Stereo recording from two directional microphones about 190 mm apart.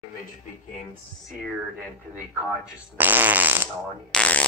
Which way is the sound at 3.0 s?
10° right (ahead or behind).